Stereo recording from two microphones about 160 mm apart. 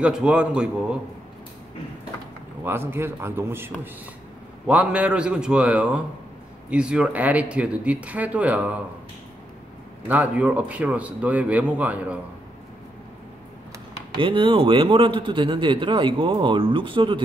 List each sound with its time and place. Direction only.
0.0 s a man's voice: 5° right (ahead or behind)
2.6 s a man's voice: 15° right (ahead or behind)
10.0 s a man's voice: 10° right (ahead or behind)
14.1 s a man's voice: 30° right (ahead or behind)